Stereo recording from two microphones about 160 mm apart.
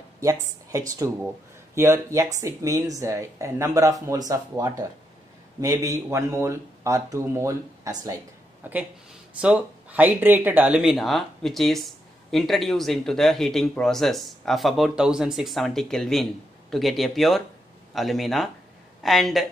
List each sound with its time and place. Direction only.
0.2 s a woman's voice: 20° right (ahead or behind); by 19.4 s centre (ahead or behind)